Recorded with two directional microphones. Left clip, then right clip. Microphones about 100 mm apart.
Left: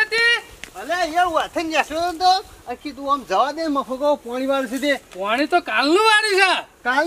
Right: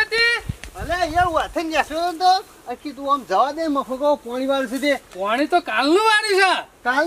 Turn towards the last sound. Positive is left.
turn(degrees=0)  # may be behind; listen again after turning